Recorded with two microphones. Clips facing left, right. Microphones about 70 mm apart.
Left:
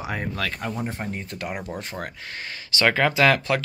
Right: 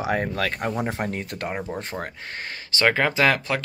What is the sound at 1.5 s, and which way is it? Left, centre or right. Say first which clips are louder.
Speech: right 2 dB; right.